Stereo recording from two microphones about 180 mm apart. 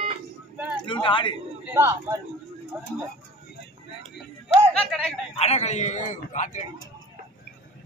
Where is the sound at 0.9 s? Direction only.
30° left (ahead or behind).